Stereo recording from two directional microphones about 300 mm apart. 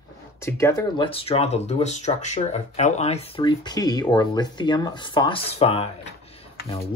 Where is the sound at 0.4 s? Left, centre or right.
Centre.